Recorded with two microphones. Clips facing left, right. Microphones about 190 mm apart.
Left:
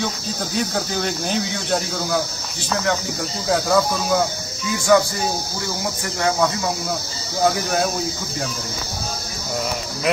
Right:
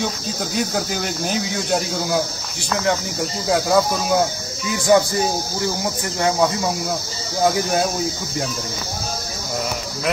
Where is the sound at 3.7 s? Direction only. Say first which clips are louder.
Right 1 dB; 20° right (ahead or behind).